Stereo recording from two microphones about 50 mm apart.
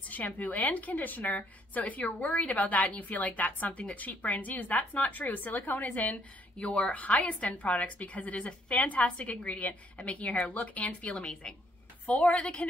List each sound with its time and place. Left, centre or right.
0.1 s a woman's voice: left